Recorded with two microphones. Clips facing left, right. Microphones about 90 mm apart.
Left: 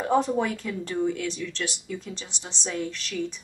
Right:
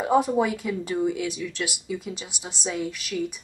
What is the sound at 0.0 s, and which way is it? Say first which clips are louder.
A woman's voice: right 2 dB; 5° right (ahead or behind).